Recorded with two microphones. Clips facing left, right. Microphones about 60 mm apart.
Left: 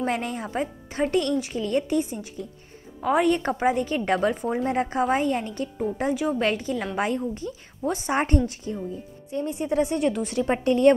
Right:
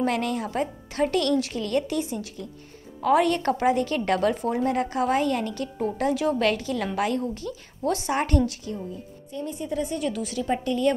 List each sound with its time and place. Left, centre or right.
0.0 s a woman's voice: left
9.5 s a woman's voice: left
9.9 s a woman's voice: left